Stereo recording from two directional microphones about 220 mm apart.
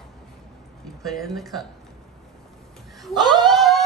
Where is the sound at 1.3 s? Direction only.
Centre (ahead or behind).